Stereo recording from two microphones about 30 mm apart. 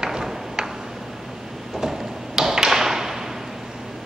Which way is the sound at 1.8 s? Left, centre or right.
Centre.